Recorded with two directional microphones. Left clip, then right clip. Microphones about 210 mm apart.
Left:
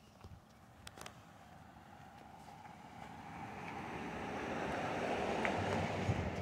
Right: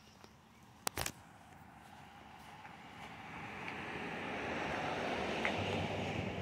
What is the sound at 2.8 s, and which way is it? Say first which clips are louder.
Vehicle: right 1 dB; 50° left (ahead or behind).